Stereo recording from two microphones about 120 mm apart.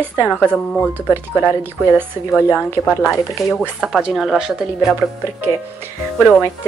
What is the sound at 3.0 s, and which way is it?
Speech, centre (ahead or behind).